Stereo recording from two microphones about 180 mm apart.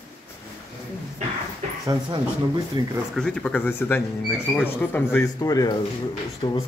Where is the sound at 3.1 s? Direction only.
5° left (ahead or behind); by 6.6 s 25° left (ahead or behind).